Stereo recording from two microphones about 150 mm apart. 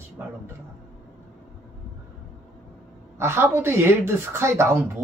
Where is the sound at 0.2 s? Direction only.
10° right (ahead or behind).